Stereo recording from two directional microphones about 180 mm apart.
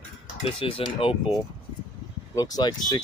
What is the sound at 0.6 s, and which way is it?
Speech, 30° left (ahead or behind).